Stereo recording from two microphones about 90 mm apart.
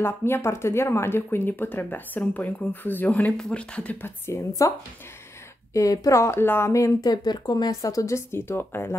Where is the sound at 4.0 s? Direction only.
35° left (ahead or behind).